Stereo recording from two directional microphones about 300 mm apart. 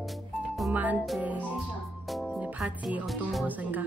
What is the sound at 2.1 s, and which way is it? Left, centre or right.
Speech, centre.